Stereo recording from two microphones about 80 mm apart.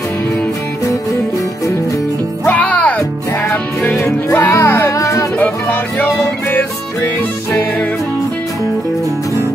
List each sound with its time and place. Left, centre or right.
2.4 s music: centre
4.3 s music: left
4.9 s music: left
5.4 s music: centre